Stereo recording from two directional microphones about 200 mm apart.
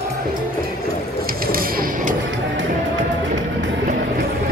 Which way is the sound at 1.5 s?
45° right (ahead or behind).